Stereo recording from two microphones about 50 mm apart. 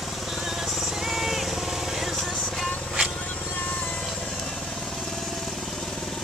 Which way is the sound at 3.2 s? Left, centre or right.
Left.